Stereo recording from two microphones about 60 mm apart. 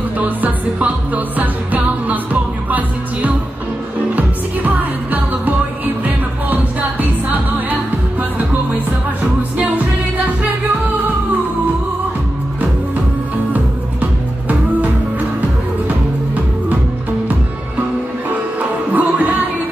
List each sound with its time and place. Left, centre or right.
0.2 s music: right
18.9 s music: right